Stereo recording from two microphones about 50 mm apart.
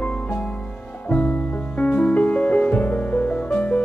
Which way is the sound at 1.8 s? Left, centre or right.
Left.